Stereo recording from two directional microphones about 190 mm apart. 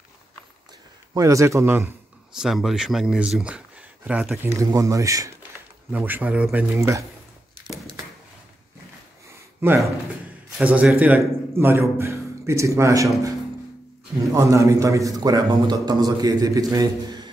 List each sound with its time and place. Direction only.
1.1 s speech: 15° right (ahead or behind)
10.6 s a man's voice: 5° right (ahead or behind)
14.2 s a man's voice: 15° right (ahead or behind)